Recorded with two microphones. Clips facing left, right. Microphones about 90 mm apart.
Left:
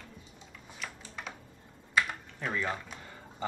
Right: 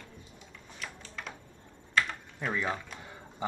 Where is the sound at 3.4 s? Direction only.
15° right (ahead or behind).